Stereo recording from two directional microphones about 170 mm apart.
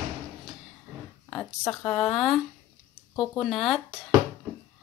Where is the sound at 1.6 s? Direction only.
15° left (ahead or behind).